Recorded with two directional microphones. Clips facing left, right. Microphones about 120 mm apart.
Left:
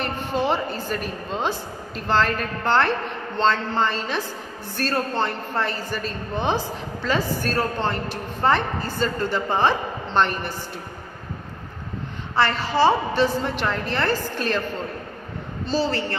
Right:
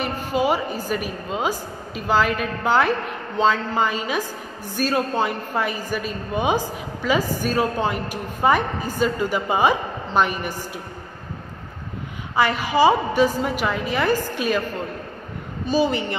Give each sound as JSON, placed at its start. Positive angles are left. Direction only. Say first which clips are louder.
{"t": 0.0, "sound": "a woman's voice", "louder": "right 2 dB", "side_deg": -10}
{"t": 12.4, "sound": "a woman's voice", "louder": "right 2 dB", "side_deg": -10}
{"t": 15.6, "sound": "a woman's voice", "louder": "right 3 dB", "side_deg": -15}